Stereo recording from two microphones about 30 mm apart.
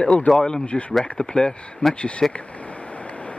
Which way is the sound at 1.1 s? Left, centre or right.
Left.